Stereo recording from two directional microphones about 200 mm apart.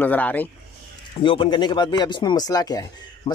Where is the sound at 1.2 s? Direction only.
25° left (ahead or behind).